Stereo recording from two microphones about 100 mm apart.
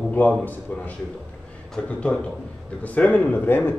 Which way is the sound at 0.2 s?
20° left (ahead or behind).